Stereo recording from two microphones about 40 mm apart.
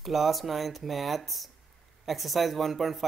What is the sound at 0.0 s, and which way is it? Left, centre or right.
Speech, centre.